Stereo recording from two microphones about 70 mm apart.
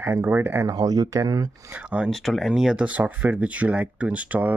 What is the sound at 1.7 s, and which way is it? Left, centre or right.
Speech, centre.